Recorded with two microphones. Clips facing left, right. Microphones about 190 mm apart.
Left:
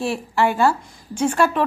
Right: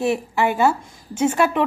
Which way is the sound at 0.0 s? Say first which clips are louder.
Right 1 dB; 20° right (ahead or behind).